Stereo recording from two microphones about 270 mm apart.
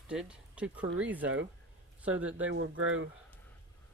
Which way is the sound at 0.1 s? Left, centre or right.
Centre.